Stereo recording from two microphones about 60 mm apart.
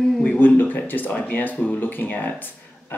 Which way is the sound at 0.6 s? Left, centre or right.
Left.